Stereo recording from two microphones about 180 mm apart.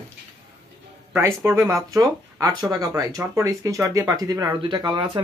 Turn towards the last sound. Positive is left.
turn(degrees=-25)  # may be behind; listen again after turning